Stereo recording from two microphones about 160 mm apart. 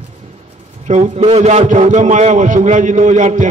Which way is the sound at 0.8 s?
45° right (ahead or behind).